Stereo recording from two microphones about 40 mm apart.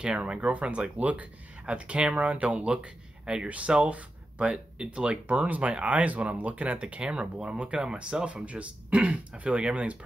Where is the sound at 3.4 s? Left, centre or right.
Right.